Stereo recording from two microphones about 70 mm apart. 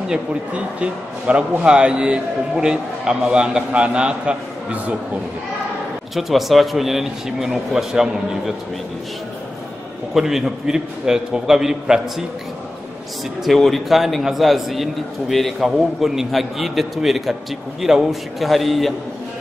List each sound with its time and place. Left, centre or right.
0.7 s a man's voice: centre
6.1 s a man's voice: centre
10.1 s a man's voice: centre
13.4 s a man's voice: centre